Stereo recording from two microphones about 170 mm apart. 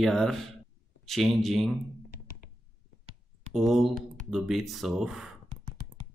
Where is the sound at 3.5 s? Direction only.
Centre (ahead or behind).